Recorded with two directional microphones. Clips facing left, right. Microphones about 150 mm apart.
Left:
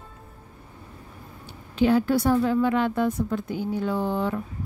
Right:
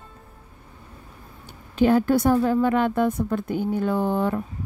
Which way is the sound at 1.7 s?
50° right (ahead or behind).